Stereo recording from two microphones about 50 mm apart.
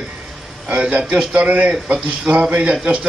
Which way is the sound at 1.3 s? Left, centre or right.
Right.